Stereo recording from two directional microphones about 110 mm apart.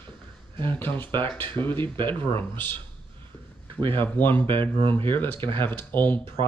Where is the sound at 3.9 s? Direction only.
20° left (ahead or behind).